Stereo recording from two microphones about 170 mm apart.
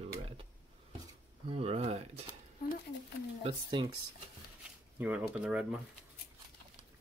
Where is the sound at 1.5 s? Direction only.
35° right (ahead or behind).